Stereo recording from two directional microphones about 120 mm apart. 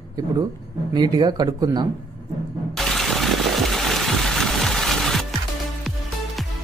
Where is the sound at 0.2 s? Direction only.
30° right (ahead or behind).